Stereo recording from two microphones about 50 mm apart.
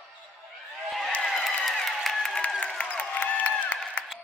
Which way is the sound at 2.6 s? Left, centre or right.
Left.